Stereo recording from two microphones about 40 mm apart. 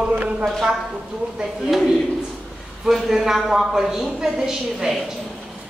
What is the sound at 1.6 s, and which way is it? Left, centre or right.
A woman's voice, centre.